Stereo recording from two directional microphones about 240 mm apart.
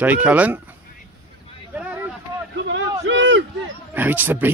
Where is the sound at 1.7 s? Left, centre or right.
Centre.